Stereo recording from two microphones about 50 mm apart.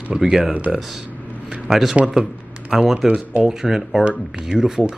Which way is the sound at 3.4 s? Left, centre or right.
Centre.